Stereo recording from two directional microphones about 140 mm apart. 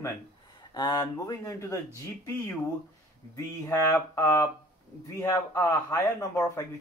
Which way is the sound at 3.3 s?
20° left (ahead or behind).